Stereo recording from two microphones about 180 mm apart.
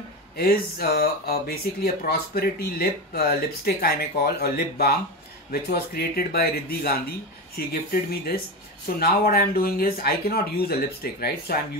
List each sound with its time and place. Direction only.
0.4 s speech: 60° left (ahead or behind)